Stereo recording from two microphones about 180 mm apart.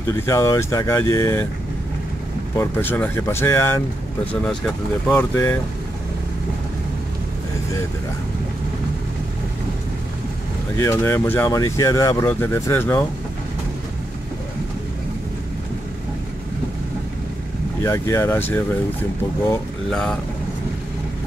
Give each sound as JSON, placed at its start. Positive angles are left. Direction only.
{"t": 0.1, "sound": "speech", "side_deg": 15}
{"t": 2.5, "sound": "speech", "side_deg": 15}
{"t": 10.8, "sound": "speech", "side_deg": 15}
{"t": 17.8, "sound": "speech", "side_deg": 15}
{"t": 19.9, "sound": "speech", "side_deg": 5}